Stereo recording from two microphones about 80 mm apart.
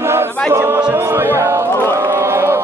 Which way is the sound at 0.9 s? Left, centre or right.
Right.